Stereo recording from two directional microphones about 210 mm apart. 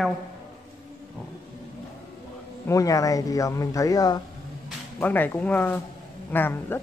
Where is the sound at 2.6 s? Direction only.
15° left (ahead or behind).